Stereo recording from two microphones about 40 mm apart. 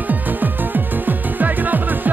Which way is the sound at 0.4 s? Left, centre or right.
Right.